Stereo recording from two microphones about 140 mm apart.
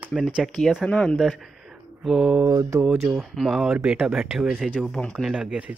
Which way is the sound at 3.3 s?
Centre (ahead or behind).